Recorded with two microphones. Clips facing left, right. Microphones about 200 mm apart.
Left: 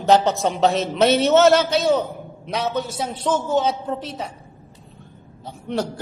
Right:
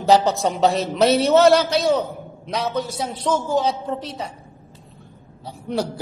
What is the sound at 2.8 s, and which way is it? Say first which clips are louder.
Speech: even; 25° left (ahead or behind).